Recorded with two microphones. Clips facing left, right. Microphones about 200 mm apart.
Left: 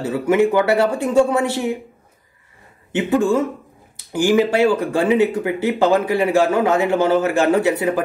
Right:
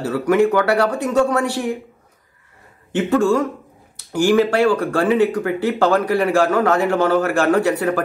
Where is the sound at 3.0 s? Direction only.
20° left (ahead or behind).